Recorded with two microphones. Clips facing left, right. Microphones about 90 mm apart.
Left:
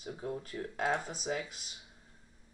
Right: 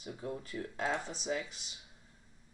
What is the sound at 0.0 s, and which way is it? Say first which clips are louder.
Speech: left 2 dB; 30° left (ahead or behind).